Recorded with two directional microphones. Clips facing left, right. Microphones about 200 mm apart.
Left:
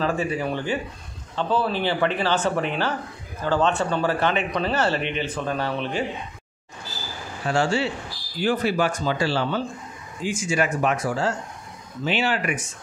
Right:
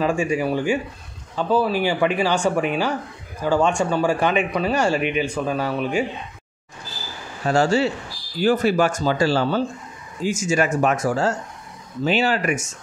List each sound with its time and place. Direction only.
0.0 s speech: 15° right (ahead or behind)
7.4 s speech: 40° right (ahead or behind)